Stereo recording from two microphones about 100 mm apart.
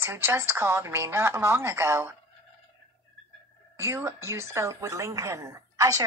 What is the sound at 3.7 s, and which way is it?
Speech, 25° right (ahead or behind).